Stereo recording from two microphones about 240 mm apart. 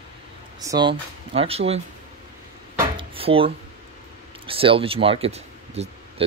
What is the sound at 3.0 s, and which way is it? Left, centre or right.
Drawer open or close, right.